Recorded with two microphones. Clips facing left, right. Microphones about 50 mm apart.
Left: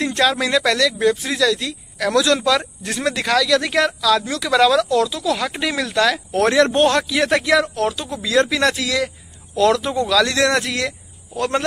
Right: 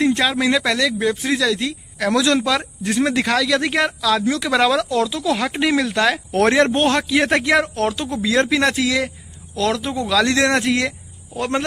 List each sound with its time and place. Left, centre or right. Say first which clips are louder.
0.3 s speech: even; centre
3.3 s speech: left 1 dB; right
5.8 s speech: even; centre
6.3 s speech: even; right
6.7 s speech: left 2 dB; centre
7.1 s speech: even; right
9.6 s speech: left 4 dB; centre
10.0 s speech: right 1 dB; right